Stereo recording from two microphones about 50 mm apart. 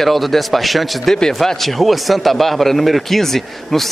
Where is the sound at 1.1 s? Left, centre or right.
Centre.